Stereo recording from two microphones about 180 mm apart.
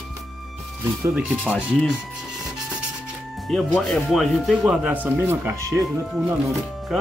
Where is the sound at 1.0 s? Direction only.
10° right (ahead or behind).